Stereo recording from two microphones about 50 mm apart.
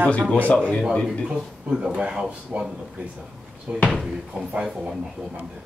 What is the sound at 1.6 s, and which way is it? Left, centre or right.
Speech, centre.